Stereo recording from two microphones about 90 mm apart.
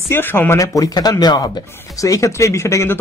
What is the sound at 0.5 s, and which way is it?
Speech, 40° left (ahead or behind).